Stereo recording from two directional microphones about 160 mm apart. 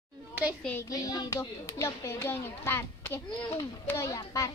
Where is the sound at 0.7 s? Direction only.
20° left (ahead or behind).